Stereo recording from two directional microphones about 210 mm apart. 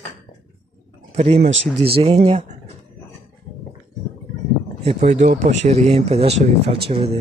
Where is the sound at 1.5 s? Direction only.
50° right (ahead or behind).